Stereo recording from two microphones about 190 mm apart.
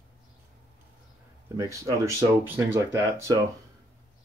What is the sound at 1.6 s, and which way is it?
Speech, 15° right (ahead or behind).